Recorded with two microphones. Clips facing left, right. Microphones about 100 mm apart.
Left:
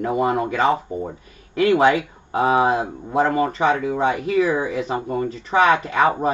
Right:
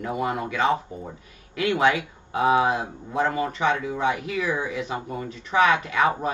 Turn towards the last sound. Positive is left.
turn(degrees=35)  # may be behind; listen again after turning